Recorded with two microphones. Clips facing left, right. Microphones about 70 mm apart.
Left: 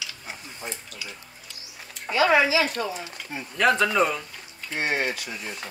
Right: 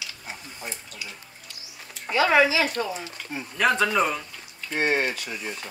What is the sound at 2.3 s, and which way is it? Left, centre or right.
Speech, centre.